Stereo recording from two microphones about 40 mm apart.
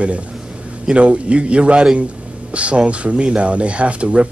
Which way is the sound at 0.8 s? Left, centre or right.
Right.